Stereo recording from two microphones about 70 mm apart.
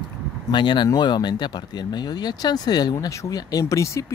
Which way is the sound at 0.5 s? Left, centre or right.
Left.